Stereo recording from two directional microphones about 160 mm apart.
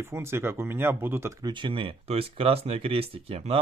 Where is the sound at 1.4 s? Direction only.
30° right (ahead or behind).